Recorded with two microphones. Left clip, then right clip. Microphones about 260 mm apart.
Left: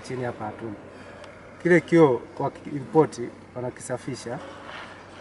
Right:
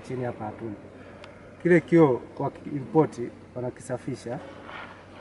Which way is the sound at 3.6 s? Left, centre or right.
Centre.